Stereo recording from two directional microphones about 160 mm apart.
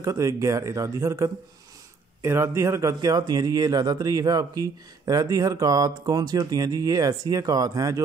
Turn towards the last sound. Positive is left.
turn(degrees=-20)  # may be behind; listen again after turning